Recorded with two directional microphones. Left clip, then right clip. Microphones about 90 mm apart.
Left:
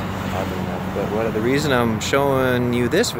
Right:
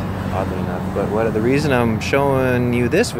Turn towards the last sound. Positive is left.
turn(degrees=20)  # may be behind; listen again after turning